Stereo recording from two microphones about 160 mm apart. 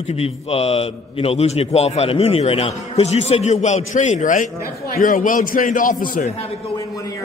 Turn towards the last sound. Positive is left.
turn(degrees=40)  # may be behind; listen again after turning